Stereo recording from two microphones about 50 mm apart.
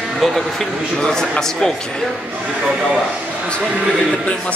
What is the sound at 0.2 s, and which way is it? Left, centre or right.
Speech, centre.